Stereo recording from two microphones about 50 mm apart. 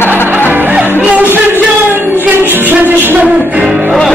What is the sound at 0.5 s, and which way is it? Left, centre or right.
Music, right.